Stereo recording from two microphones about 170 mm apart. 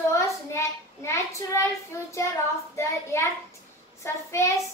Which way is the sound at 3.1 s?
15° left (ahead or behind).